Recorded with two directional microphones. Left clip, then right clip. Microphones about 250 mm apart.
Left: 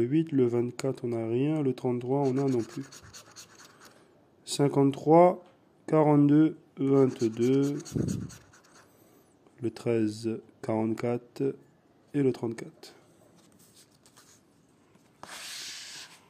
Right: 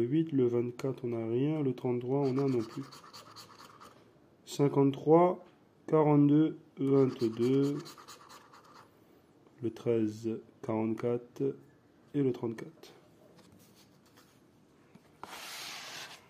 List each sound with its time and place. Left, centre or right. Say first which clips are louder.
0.0 s speech: left 3 dB; centre
2.6 s speech: left 3 dB; centre
4.5 s speech: left 3 dB; centre
9.6 s speech: left 2 dB; centre